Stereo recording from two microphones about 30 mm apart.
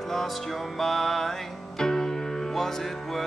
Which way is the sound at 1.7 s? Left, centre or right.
Left.